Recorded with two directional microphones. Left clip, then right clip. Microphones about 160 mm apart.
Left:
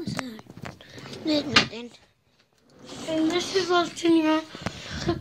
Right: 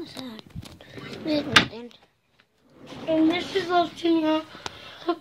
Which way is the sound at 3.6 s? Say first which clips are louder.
Right 2 dB; 40° left (ahead or behind).